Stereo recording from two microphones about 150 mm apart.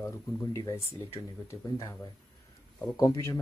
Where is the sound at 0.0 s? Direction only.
20° left (ahead or behind).